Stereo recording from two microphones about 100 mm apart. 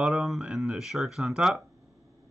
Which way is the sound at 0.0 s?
Centre (ahead or behind).